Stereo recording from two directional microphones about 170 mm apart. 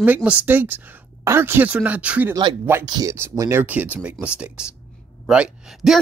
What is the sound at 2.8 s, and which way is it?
Speech, 20° right (ahead or behind).